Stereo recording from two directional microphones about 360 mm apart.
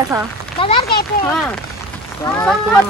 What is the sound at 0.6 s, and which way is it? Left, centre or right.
Speech, centre.